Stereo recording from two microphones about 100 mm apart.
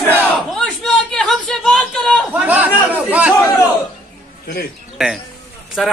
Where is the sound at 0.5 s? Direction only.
5° left (ahead or behind).